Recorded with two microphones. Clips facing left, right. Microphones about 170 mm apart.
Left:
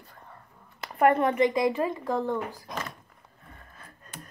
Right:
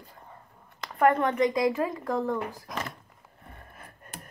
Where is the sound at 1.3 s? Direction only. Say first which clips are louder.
Left 1 dB; centre (ahead or behind).